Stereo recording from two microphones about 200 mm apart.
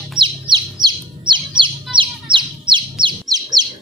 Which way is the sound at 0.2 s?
20° right (ahead or behind).